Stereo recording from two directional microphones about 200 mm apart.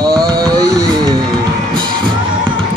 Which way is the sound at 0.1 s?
20° right (ahead or behind).